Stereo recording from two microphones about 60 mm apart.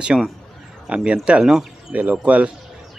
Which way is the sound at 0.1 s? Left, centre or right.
Centre.